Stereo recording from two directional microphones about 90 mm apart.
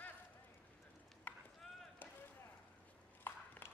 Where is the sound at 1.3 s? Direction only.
20° left (ahead or behind).